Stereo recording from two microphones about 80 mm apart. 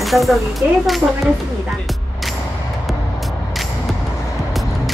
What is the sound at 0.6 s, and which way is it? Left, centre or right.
Speech, right.